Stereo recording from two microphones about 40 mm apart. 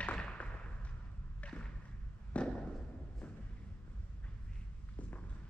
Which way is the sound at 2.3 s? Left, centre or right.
Left.